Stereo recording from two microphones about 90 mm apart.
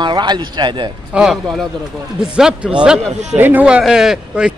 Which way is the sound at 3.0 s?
20° right (ahead or behind).